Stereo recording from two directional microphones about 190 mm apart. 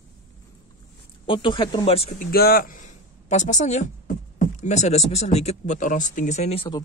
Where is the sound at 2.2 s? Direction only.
55° left (ahead or behind); by 6.7 s 35° left (ahead or behind).